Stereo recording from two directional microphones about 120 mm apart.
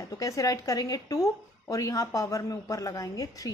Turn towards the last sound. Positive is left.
turn(degrees=30)  # may be behind; listen again after turning